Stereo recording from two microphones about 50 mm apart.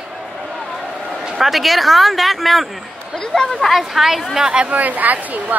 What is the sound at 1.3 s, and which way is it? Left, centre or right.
Speech, centre.